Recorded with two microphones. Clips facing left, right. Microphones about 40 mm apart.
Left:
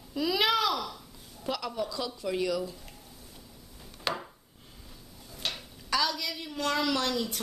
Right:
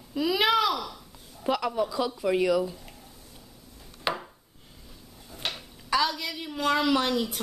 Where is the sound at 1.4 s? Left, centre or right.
Right.